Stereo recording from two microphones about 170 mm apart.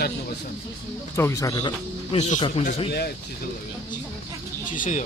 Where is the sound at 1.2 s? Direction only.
15° left (ahead or behind).